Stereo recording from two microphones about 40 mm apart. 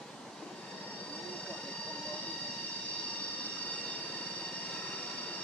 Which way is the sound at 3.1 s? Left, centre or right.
Left.